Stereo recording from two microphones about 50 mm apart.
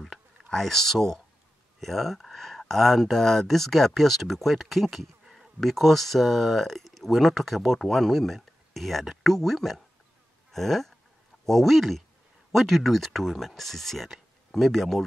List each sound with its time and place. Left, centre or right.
0.5 s speech: centre
10.5 s a sound: centre
11.4 s speech: centre